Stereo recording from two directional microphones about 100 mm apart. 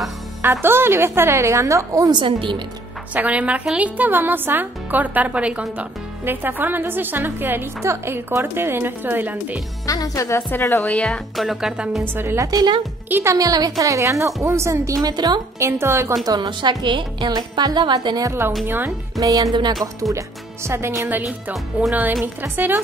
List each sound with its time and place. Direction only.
0.4 s a woman's voice: 25° right (ahead or behind)
2.1 s a woman's voice: 55° right (ahead or behind)
3.2 s a woman's voice: 15° right (ahead or behind)
9.8 s a woman's voice: 35° left (ahead or behind)
10.9 s speech: 5° left (ahead or behind)
12.0 s a woman's voice: 20° right (ahead or behind)
12.4 s a woman's voice: 40° right (ahead or behind)
13.1 s a woman's voice: 30° right (ahead or behind)
15.6 s a woman's voice: 25° right (ahead or behind)
16.3 s a woman's voice: 45° right (ahead or behind); by 22.8 s 20° right (ahead or behind)